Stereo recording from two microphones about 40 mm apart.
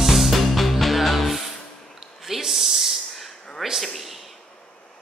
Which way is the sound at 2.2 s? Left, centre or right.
Centre.